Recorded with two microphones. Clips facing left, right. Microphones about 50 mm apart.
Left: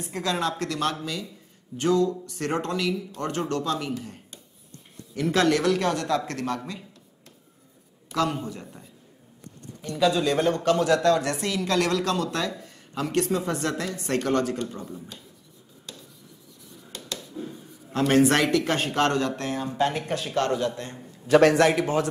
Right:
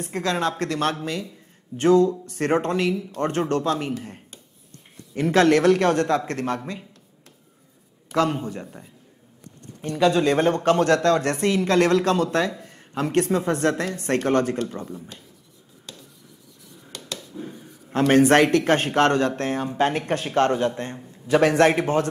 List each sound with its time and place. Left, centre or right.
0.0 s speech: right
6.6 s speech: right
8.1 s speech: right
9.8 s speech: right
17.4 s speech: right
21.3 s a man's voice: centre
21.5 s speech: right